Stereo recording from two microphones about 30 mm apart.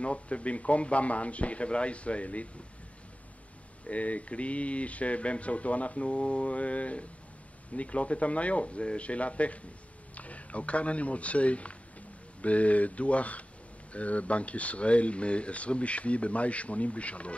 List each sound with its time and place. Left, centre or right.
0.0 s speech: left
3.8 s speech: left